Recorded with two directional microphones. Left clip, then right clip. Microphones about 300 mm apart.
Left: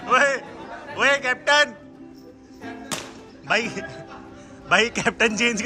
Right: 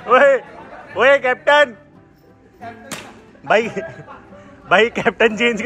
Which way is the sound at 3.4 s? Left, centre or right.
Centre.